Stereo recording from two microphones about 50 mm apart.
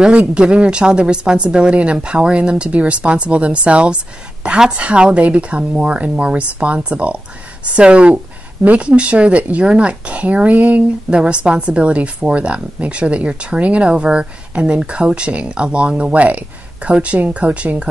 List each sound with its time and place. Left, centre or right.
0.0 s speech: right